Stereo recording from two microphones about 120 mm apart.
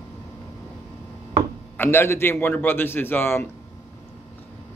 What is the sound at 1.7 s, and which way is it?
A man's voice, 20° left (ahead or behind).